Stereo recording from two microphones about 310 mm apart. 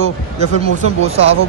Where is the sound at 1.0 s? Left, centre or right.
Centre.